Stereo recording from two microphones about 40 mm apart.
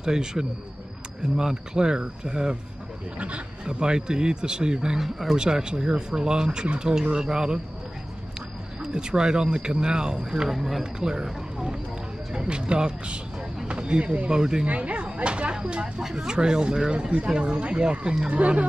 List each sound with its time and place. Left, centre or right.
0.0 s speech: centre
3.2 s speech: right
3.6 s speech: centre
10.5 s speech: centre
11.0 s speech: centre
12.3 s speech: right
14.7 s speech: right
15.1 s a sound: right
16.2 s speech: right